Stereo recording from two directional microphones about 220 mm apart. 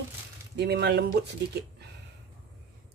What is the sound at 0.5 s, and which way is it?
Speech, 50° right (ahead or behind).